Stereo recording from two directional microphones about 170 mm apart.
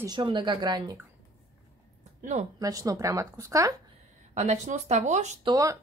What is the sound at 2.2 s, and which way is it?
Speech, 45° right (ahead or behind).